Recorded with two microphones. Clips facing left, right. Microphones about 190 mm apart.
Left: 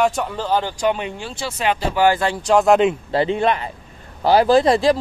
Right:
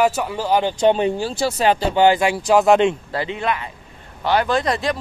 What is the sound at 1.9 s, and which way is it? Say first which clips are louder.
Speech: even; 20° right (ahead or behind).